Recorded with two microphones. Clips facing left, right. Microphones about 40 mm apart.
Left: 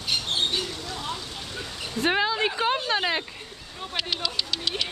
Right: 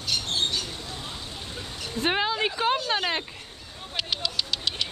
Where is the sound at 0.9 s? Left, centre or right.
Left.